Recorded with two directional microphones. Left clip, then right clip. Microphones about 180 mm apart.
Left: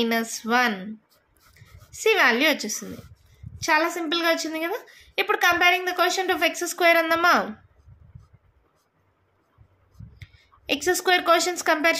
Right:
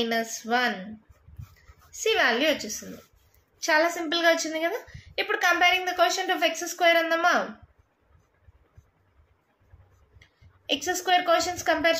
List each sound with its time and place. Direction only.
0.0 s a woman's voice: 45° left (ahead or behind)
1.9 s a woman's voice: 45° left (ahead or behind)
3.5 s a woman's voice: 35° left (ahead or behind)
10.7 s a woman's voice: 50° left (ahead or behind)